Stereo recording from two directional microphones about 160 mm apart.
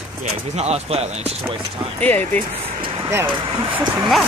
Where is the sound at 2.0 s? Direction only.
10° left (ahead or behind).